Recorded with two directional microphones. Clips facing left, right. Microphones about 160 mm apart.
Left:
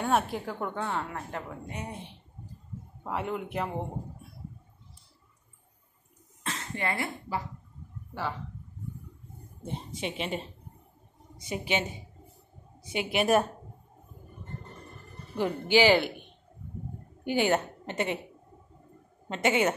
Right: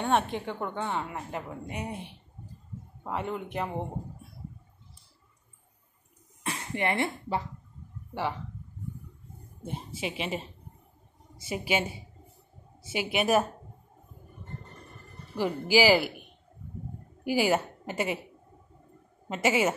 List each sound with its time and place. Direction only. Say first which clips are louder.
0.0 s a woman's voice: right 1 dB; 5° left (ahead or behind)
1.1 s a woman's voice: right 1 dB; 10° right (ahead or behind)
3.0 s a woman's voice: even; centre (ahead or behind)
6.4 s speech: right 3 dB; 15° right (ahead or behind)
9.7 s a woman's voice: even; 5° right (ahead or behind)
15.3 s a woman's voice: even; 5° right (ahead or behind)
19.2 s a woman's voice: even; 5° right (ahead or behind)